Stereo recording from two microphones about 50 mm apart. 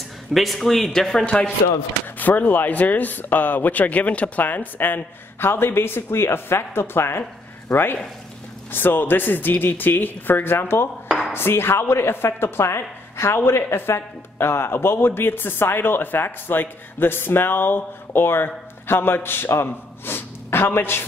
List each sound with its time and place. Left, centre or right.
0.3 s speech: centre
1.2 s a man's voice: left